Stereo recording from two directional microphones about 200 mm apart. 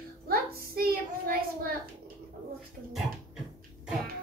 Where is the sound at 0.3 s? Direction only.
50° right (ahead or behind).